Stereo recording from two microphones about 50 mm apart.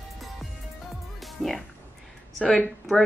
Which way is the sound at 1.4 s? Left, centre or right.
Centre.